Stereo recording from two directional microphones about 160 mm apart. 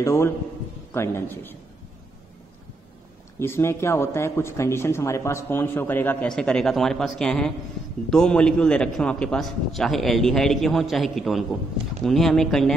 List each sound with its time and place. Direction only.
0.0 s a man's voice: 20° left (ahead or behind)
3.3 s a man's voice: 15° left (ahead or behind)